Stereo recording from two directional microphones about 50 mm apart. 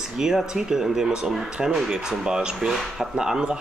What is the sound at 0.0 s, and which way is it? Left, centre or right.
Speech, centre.